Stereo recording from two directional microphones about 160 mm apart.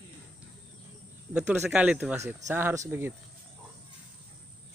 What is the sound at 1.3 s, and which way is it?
Speech, 10° right (ahead or behind).